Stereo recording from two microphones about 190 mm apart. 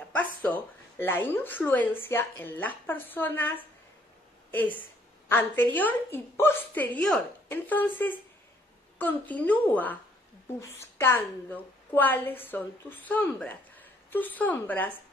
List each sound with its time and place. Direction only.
0.1 s a woman's voice: 10° left (ahead or behind)